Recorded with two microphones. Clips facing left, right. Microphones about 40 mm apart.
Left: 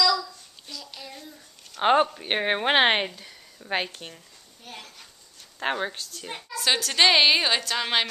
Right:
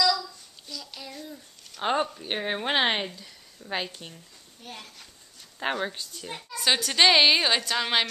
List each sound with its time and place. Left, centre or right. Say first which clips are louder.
0.7 s child singing: even; centre
1.8 s speech: left 6 dB; left
4.6 s a woman's voice: even; centre
6.5 s a woman's voice: even; centre